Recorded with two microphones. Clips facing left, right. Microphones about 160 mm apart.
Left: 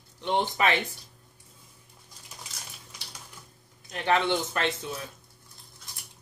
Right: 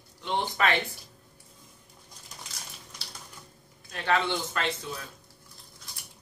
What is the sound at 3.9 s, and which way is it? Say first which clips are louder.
Speech: left 2 dB; 20° left (ahead or behind).